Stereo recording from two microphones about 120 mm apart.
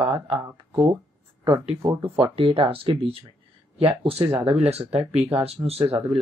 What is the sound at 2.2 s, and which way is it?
Speech, 50° right (ahead or behind).